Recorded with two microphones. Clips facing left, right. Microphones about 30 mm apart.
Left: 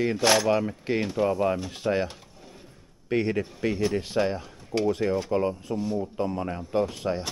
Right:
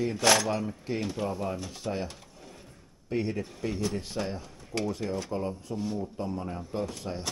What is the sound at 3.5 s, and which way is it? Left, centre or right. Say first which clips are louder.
Speech: left 6 dB; left.